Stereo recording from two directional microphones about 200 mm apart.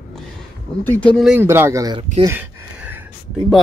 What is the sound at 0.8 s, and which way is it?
Speech, 10° left (ahead or behind).